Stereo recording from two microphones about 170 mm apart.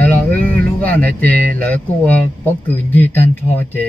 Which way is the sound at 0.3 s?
10° left (ahead or behind).